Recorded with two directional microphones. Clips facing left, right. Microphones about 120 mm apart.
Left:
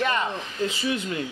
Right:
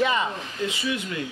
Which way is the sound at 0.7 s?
30° left (ahead or behind).